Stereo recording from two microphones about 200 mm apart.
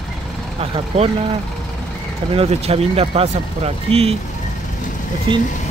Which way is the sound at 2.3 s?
30° right (ahead or behind).